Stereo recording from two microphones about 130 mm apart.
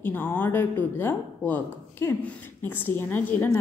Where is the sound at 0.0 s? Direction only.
15° left (ahead or behind).